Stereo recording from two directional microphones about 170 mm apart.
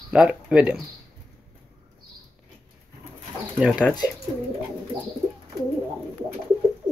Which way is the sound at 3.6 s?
5° right (ahead or behind).